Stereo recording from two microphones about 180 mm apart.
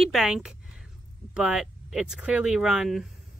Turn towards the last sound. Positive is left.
turn(degrees=0)  # may be behind; listen again after turning